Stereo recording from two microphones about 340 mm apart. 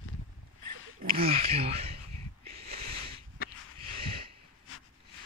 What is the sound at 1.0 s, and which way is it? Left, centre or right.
Speech, right.